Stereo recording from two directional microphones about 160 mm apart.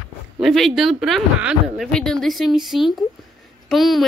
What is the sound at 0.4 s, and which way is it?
A woman's voice, centre (ahead or behind).